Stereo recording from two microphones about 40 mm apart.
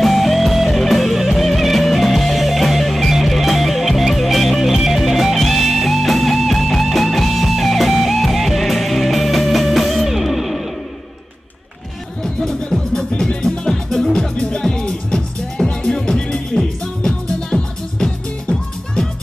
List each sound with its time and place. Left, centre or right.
0.0 s music: centre
12.2 s music: centre